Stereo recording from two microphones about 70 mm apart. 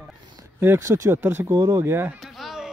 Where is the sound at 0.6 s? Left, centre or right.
Right.